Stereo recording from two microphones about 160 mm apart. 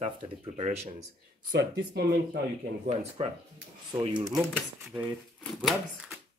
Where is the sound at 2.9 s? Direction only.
45° right (ahead or behind).